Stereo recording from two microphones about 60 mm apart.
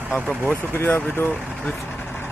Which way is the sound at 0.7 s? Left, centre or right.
Left.